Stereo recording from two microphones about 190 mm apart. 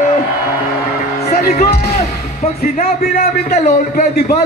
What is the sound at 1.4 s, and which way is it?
Music, 50° left (ahead or behind).